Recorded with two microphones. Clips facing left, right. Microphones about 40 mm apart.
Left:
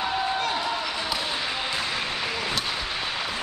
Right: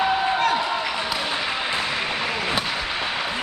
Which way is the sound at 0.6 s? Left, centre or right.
Right.